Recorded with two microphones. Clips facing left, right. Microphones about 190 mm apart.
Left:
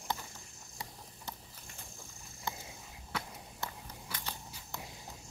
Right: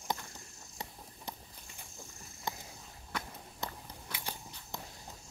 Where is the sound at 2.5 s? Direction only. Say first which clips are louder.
Right 1 dB; 15° right (ahead or behind).